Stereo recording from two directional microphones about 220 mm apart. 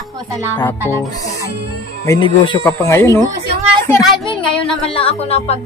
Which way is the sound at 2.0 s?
20° left (ahead or behind).